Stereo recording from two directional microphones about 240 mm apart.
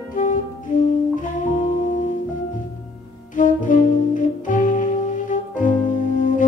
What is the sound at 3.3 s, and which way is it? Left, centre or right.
Music, left.